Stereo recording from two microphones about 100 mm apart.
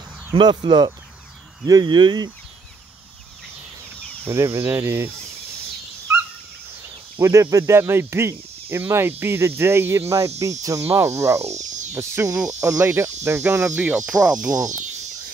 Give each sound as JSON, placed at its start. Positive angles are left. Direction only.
{"t": 0.3, "sound": "speech", "side_deg": -45}
{"t": 4.3, "sound": "cricket", "side_deg": -25}
{"t": 7.2, "sound": "cricket", "side_deg": -30}
{"t": 10.4, "sound": "speech", "side_deg": -35}
{"t": 10.9, "sound": "cricket", "side_deg": -30}
{"t": 11.5, "sound": "speech", "side_deg": -30}
{"t": 12.4, "sound": "speech", "side_deg": -15}
{"t": 12.6, "sound": "cricket", "side_deg": -30}
{"t": 14.3, "sound": "speech", "side_deg": -40}